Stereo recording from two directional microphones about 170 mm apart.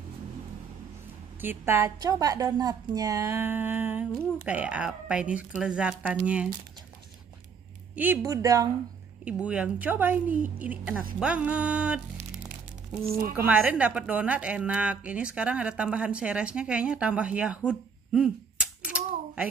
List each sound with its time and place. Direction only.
1.4 s a woman's voice: 10° right (ahead or behind)
7.9 s speech: 10° right (ahead or behind)
9.2 s a woman's voice: 5° right (ahead or behind)
13.1 s a woman's voice: 10° right (ahead or behind)
17.6 s cap gun: 5° right (ahead or behind)